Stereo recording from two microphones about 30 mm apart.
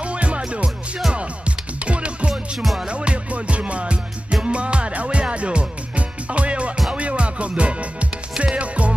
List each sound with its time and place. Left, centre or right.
0.0 s music: right
2.6 s music: centre
2.9 s music: right